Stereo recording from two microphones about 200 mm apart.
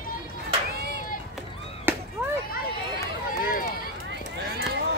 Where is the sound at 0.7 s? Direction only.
55° right (ahead or behind).